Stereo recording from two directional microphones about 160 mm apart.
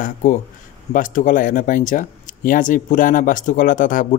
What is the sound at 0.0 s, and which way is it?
A man's voice, 50° left (ahead or behind).